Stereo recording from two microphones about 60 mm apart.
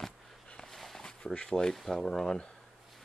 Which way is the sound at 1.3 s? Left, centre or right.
Centre.